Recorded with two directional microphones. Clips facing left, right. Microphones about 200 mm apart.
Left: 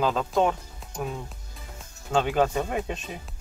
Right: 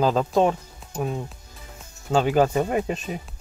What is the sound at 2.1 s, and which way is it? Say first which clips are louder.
Speech: right 4 dB; 40° right (ahead or behind).